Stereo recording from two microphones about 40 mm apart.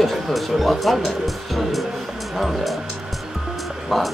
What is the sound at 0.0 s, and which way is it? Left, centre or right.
Speech, centre.